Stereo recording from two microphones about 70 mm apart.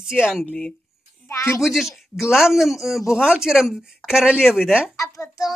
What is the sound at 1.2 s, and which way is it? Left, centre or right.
Speech, left.